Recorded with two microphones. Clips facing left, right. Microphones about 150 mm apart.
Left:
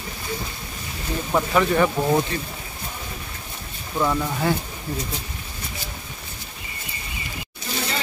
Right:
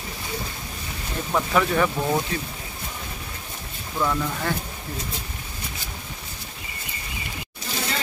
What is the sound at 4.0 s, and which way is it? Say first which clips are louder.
Speech: left 2 dB; 15° left (ahead or behind).